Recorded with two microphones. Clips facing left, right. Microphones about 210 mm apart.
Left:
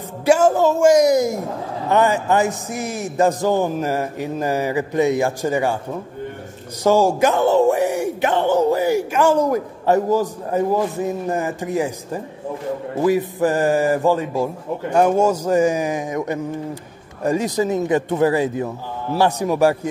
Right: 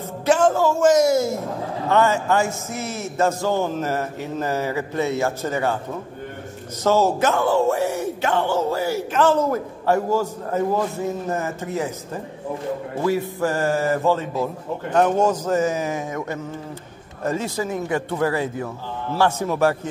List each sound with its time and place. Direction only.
0.2 s speech: 10° left (ahead or behind)
6.8 s speech: 15° left (ahead or behind)